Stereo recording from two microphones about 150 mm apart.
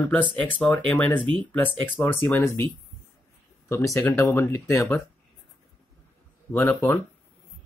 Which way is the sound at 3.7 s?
20° left (ahead or behind).